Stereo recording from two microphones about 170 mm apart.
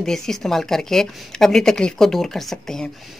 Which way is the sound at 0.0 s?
5° left (ahead or behind).